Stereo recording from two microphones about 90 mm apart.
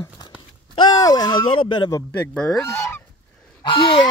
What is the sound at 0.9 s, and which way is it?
Speech, 45° left (ahead or behind).